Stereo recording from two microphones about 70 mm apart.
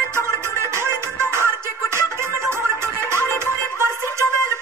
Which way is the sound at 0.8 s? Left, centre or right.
Right.